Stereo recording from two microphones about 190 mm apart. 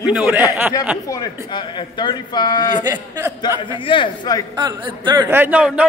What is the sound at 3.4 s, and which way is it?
A man's voice, 25° left (ahead or behind).